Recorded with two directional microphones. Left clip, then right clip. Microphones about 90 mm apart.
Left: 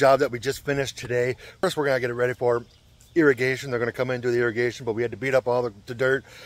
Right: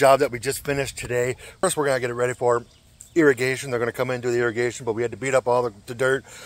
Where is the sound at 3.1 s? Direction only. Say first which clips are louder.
Right 1 dB; 5° left (ahead or behind).